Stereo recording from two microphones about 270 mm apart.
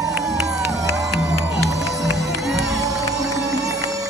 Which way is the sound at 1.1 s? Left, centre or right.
Right.